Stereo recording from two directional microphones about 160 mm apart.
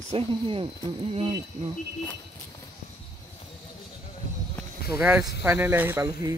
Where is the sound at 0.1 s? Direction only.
35° right (ahead or behind).